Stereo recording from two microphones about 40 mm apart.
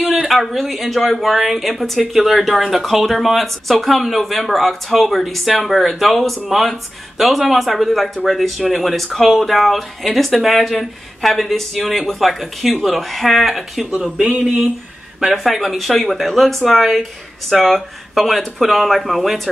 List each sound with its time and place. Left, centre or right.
0.2 s speech: centre
14.2 s speech: right
15.3 s speech: centre